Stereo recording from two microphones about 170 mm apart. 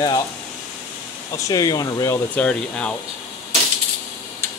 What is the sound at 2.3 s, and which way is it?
Speech, 5° left (ahead or behind).